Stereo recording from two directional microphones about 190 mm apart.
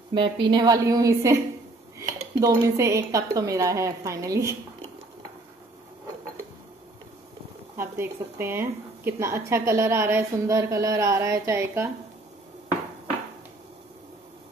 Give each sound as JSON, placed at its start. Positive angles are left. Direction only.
{"t": 0.1, "sound": "a woman's voice", "side_deg": -25}
{"t": 2.4, "sound": "a woman's voice", "side_deg": -15}
{"t": 7.7, "sound": "a woman's voice", "side_deg": -15}